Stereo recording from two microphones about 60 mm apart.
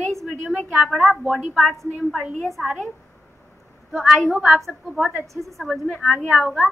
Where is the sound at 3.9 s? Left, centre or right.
Centre.